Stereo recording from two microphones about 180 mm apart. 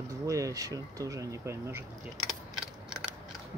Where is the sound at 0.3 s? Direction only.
20° right (ahead or behind).